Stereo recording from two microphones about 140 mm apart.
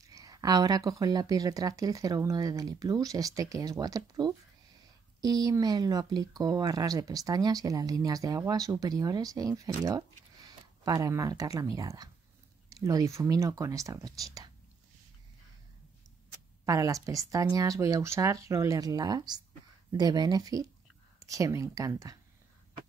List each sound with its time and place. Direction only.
0.0 s speech: 25° right (ahead or behind)
16.6 s speech: 25° right (ahead or behind)